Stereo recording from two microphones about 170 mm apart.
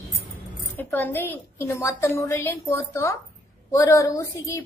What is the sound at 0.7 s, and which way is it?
A woman's voice, 10° left (ahead or behind).